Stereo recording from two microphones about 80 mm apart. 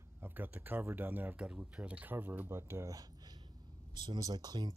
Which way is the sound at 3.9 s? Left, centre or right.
Right.